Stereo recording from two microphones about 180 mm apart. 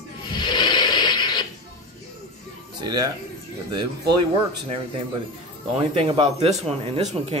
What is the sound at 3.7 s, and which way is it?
Speech, 25° right (ahead or behind).